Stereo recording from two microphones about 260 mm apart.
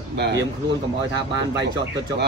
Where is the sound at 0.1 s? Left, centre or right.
Right.